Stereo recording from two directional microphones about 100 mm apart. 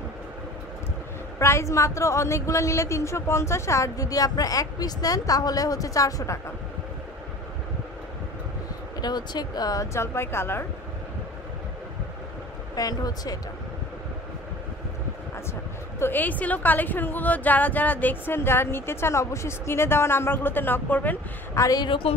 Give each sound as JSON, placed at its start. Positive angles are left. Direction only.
{"t": 1.4, "sound": "a woman's voice", "side_deg": 30}
{"t": 9.0, "sound": "speech", "side_deg": 45}
{"t": 9.9, "sound": "a woman's voice", "side_deg": 25}
{"t": 12.7, "sound": "a woman's voice", "side_deg": 40}
{"t": 16.0, "sound": "a woman's voice", "side_deg": 20}
{"t": 21.5, "sound": "a woman's voice", "side_deg": 35}
{"t": 21.8, "sound": "a woman's voice", "side_deg": 55}